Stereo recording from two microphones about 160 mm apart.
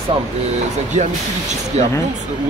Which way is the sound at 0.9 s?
50° right (ahead or behind).